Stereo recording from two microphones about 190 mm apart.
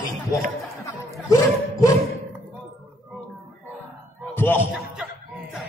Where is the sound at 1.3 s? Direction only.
20° left (ahead or behind).